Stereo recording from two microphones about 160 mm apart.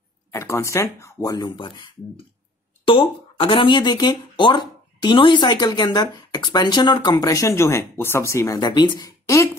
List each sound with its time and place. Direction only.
0.3 s speech: 15° left (ahead or behind)